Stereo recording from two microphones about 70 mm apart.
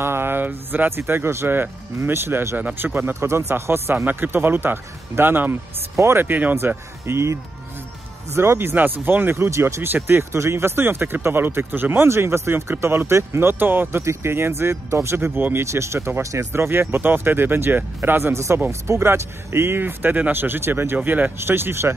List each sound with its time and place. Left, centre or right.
0.0 s speech: right
6.2 s speech: right
16.6 s speech: right